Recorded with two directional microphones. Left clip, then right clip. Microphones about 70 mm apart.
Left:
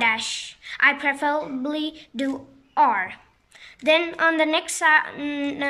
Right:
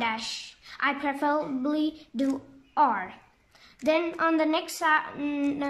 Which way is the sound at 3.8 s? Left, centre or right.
Right.